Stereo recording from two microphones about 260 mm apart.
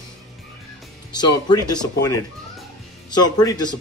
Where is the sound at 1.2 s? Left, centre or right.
Centre.